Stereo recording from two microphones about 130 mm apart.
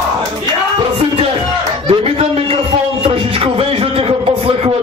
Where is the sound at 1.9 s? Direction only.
45° right (ahead or behind).